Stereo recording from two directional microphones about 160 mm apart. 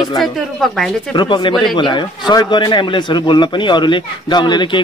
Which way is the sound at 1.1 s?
30° left (ahead or behind).